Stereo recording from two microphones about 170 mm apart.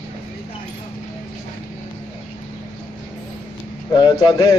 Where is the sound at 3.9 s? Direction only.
25° left (ahead or behind).